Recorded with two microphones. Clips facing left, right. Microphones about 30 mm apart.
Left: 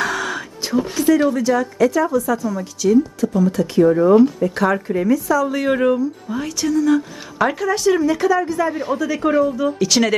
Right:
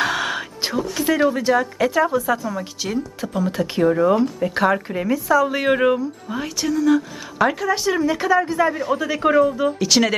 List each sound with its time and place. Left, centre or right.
0.0 s music: right
0.9 s a woman's voice: right
3.9 s a woman's voice: centre